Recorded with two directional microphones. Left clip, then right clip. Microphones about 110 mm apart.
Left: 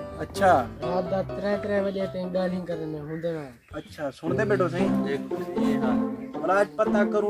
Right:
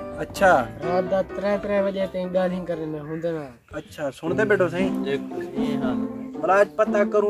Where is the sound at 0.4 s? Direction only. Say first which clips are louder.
Right 3 dB; 20° right (ahead or behind).